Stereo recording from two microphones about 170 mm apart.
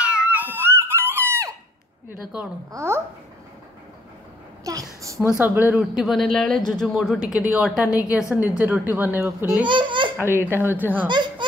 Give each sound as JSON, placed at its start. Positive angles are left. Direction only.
{"t": 0.0, "sound": "a sound", "side_deg": -5}
{"t": 2.7, "sound": "a child's voice", "side_deg": -15}
{"t": 4.7, "sound": "a woman's voice", "side_deg": -20}
{"t": 5.0, "sound": "a sound", "side_deg": -20}
{"t": 5.4, "sound": "a child's voice", "side_deg": -10}
{"t": 5.8, "sound": "a man's voice", "side_deg": 0}
{"t": 9.7, "sound": "baby laughter", "side_deg": -30}
{"t": 10.5, "sound": "a child's voice", "side_deg": -15}
{"t": 11.1, "sound": "speech", "side_deg": -25}